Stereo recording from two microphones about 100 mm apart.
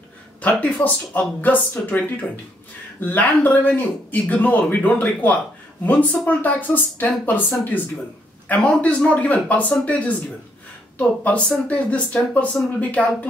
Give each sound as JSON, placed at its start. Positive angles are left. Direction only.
{"t": 0.4, "sound": "speech", "side_deg": 15}